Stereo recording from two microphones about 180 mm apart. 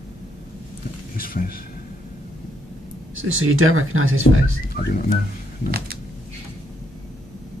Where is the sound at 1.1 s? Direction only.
55° left (ahead or behind).